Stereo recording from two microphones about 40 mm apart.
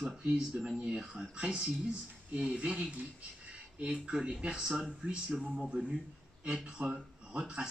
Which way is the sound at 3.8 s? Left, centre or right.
Right.